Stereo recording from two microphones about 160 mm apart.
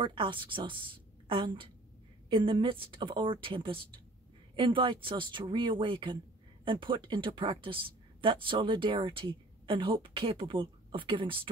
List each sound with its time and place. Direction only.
0.0 s a woman's voice: 30° right (ahead or behind)